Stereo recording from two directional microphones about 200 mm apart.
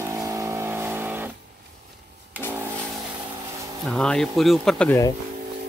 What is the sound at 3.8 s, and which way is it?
Speech, centre (ahead or behind).